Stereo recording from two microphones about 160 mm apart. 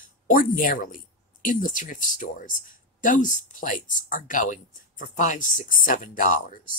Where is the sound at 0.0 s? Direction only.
60° left (ahead or behind).